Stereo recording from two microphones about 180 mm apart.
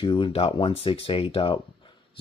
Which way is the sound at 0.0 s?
25° left (ahead or behind).